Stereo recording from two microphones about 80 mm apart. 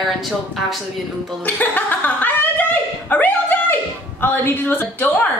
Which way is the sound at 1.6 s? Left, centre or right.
Left.